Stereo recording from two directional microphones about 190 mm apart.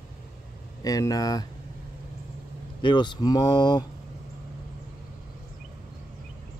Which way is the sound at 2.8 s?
25° left (ahead or behind).